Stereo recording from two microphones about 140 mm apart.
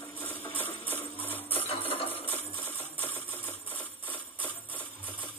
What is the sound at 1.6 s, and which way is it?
Music, 45° left (ahead or behind).